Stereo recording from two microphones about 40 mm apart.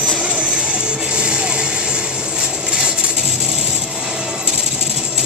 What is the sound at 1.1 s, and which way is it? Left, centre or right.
Music, right.